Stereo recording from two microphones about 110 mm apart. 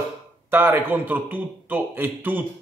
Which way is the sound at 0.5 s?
15° right (ahead or behind).